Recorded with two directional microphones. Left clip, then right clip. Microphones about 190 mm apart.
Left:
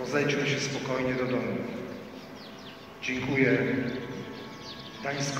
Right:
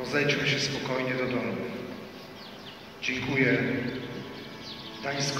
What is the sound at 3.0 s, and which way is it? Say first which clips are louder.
Speech: even; 25° left (ahead or behind).